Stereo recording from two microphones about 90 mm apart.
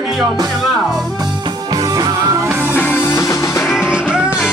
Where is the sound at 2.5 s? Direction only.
25° right (ahead or behind).